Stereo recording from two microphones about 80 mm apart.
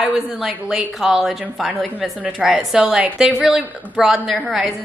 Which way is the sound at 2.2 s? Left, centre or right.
Centre.